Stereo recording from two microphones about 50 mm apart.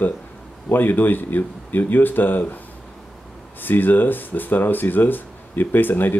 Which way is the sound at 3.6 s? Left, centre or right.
Left.